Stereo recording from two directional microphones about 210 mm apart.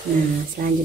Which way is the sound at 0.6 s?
45° right (ahead or behind).